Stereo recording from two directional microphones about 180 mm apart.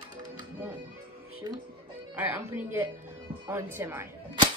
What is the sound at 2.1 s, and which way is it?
Speech, 10° right (ahead or behind).